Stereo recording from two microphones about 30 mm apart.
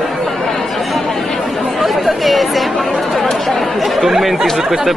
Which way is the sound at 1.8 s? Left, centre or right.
Centre.